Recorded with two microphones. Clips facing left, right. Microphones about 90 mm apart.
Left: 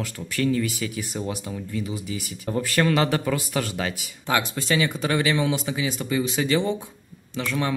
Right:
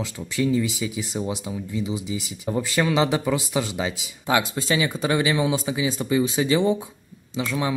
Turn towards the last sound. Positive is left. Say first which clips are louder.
# right 1 dB
turn(degrees=-15)  # may be behind; listen again after turning